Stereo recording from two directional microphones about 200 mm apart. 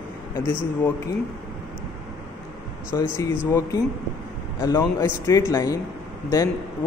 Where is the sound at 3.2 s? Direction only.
15° left (ahead or behind).